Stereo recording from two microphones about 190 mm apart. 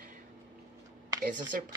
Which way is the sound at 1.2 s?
45° right (ahead or behind).